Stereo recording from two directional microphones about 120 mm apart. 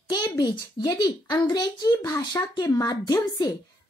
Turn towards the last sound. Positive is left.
turn(degrees=35)  # may be behind; listen again after turning